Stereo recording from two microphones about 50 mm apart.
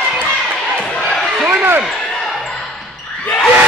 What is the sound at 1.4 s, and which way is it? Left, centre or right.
Basketball bounce, right.